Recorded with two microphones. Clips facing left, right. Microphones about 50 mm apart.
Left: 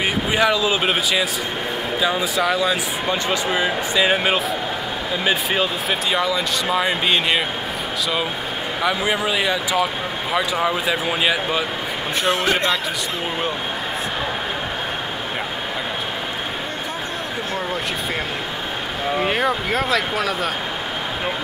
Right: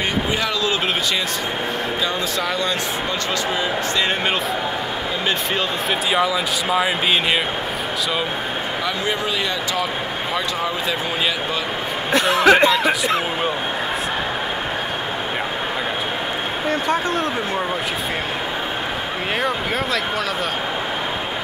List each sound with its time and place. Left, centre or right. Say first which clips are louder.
0.4 s speech: left 3 dB; centre
6.1 s speech: right 2 dB; centre
8.8 s speech: left 5 dB; centre
12.5 s speech: right 12 dB; right
19.3 s speech: left 1 dB; centre